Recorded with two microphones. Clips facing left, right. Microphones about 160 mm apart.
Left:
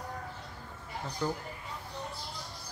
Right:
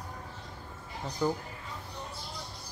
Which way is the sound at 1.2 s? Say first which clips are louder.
Right 4 dB; 10° right (ahead or behind).